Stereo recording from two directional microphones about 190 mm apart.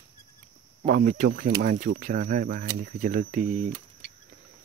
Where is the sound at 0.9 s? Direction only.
45° right (ahead or behind).